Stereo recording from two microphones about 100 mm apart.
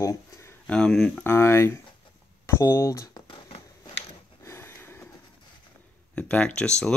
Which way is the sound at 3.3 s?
65° left (ahead or behind).